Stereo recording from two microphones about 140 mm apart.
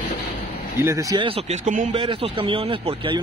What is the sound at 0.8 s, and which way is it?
Speech, 20° right (ahead or behind).